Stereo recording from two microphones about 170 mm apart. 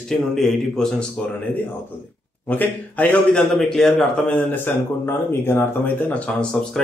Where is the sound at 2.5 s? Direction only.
10° left (ahead or behind).